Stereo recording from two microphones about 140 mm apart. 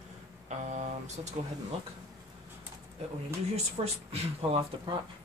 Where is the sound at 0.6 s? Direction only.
60° right (ahead or behind).